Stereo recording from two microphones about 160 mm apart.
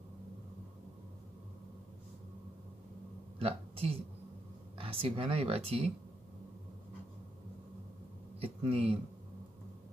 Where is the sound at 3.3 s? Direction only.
35° right (ahead or behind).